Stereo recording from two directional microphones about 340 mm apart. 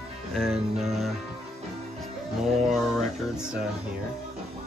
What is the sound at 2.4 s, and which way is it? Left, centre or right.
Speech, centre.